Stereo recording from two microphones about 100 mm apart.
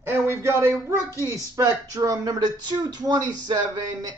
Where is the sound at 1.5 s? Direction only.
35° right (ahead or behind).